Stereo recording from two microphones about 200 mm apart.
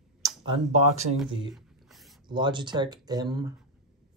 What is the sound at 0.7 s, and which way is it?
Speech, 35° right (ahead or behind).